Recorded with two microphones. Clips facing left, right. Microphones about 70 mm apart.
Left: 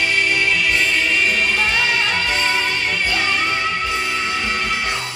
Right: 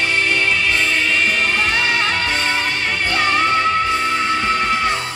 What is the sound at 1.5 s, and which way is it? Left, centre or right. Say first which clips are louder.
Music: right 1 dB; right.